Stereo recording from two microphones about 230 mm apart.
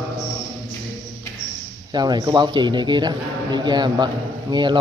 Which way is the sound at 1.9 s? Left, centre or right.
Centre.